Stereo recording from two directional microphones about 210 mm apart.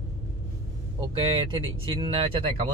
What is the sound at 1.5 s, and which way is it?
A man's voice, 25° right (ahead or behind).